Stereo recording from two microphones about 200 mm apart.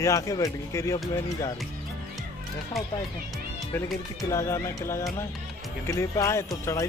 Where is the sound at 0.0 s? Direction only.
15° left (ahead or behind).